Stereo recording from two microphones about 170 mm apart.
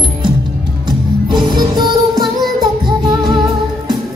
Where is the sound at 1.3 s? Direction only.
25° right (ahead or behind).